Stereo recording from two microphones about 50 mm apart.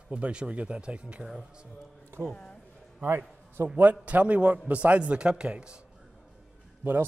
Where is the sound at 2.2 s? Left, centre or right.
Centre.